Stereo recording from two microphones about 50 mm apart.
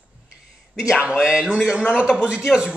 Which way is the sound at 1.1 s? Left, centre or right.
Centre.